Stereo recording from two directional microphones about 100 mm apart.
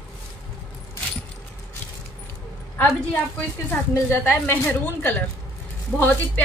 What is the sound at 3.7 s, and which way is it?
A woman's voice, 20° left (ahead or behind).